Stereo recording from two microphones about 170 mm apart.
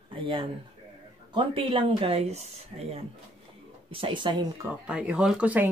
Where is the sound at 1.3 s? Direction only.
30° right (ahead or behind).